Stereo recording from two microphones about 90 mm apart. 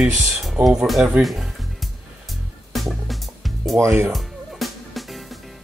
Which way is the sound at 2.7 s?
Centre (ahead or behind).